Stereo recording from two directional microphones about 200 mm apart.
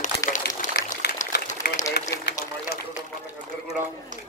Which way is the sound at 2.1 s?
15° left (ahead or behind).